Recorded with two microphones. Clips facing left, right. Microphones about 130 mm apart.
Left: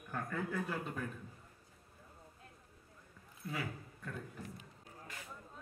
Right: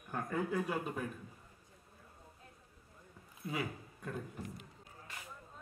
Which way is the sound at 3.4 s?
20° right (ahead or behind).